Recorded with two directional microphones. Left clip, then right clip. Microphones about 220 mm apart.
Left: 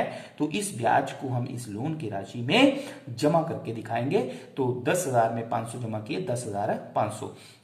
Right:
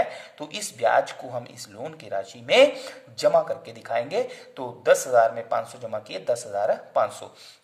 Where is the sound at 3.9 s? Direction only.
40° right (ahead or behind).